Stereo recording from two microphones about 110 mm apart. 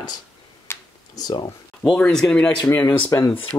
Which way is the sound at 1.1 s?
40° left (ahead or behind).